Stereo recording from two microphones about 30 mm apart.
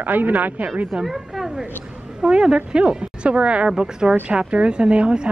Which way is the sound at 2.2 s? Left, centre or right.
Right.